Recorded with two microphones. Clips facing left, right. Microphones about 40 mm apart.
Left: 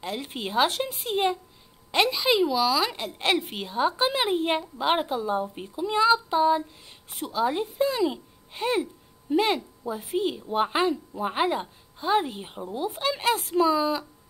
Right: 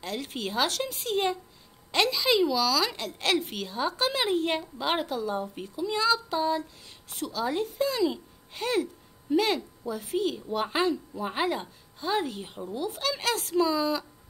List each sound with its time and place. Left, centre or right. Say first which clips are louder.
0.0 s a woman's voice: left 1 dB; left